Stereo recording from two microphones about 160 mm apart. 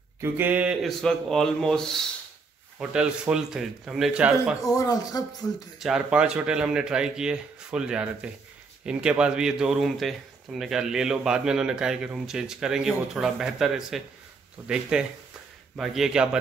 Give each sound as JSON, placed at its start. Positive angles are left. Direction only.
{"t": 0.2, "sound": "speech", "side_deg": -10}
{"t": 4.6, "sound": "speech", "side_deg": 20}
{"t": 5.8, "sound": "speech", "side_deg": -5}